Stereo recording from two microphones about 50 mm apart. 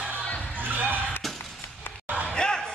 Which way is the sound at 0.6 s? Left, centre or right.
Right.